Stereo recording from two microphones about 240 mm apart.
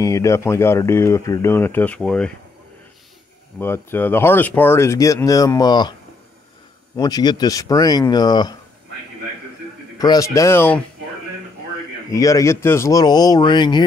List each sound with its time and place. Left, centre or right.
0.0 s speech: centre
3.5 s speech: centre
7.0 s speech: centre
9.9 s speech: centre
12.1 s speech: centre